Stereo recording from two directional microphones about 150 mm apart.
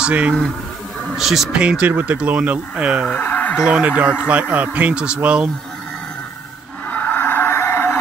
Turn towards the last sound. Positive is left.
turn(degrees=15)  # may be behind; listen again after turning